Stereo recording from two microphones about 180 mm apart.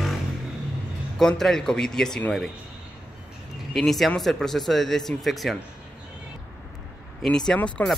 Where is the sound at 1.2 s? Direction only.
Centre (ahead or behind).